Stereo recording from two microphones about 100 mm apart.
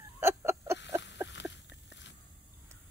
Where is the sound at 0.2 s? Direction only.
25° right (ahead or behind).